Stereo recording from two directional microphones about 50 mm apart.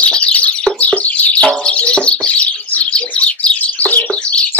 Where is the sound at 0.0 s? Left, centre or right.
Left.